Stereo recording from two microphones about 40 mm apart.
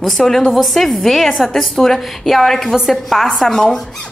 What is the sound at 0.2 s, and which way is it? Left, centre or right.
Speech, centre.